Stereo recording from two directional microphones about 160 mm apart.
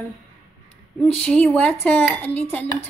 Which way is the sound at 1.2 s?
5° left (ahead or behind).